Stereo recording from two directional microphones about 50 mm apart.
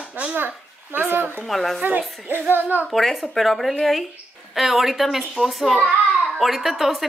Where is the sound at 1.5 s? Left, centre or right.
Centre.